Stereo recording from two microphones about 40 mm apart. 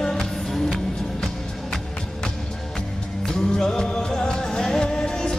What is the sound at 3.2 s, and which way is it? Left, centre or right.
Music, centre.